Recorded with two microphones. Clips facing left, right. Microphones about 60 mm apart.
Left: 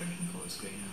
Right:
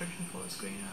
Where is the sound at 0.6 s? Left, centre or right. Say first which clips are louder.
Right 3 dB; centre.